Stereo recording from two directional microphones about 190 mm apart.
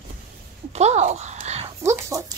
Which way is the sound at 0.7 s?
35° right (ahead or behind).